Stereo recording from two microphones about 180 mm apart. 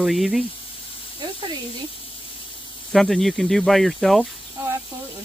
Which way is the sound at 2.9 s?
Centre (ahead or behind).